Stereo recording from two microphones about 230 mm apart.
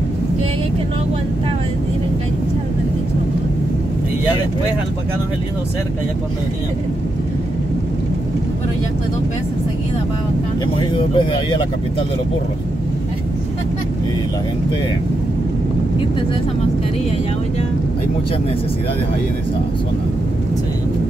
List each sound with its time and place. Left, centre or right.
10.8 s speech: left